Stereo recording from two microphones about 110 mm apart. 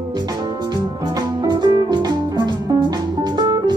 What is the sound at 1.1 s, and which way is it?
Music, 40° right (ahead or behind).